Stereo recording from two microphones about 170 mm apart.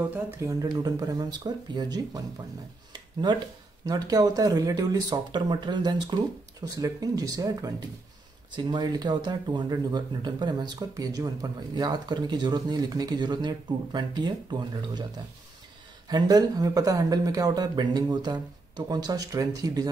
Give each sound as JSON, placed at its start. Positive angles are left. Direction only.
{"t": 0.1, "sound": "speech", "side_deg": -20}
{"t": 2.9, "sound": "a sound", "side_deg": -25}
{"t": 3.8, "sound": "speech", "side_deg": -20}
{"t": 16.1, "sound": "speech", "side_deg": -25}